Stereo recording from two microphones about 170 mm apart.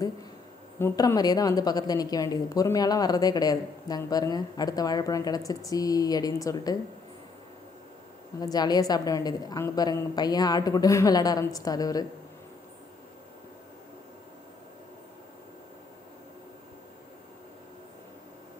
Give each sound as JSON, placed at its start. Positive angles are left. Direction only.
{"t": 0.7, "sound": "a woman's voice", "side_deg": 20}
{"t": 8.4, "sound": "a woman's voice", "side_deg": 25}